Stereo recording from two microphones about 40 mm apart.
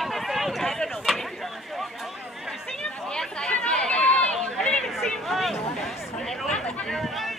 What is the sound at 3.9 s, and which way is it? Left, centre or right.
Run, left.